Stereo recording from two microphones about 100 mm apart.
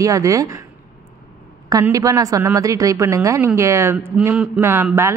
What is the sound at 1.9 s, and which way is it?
Speech, 35° right (ahead or behind).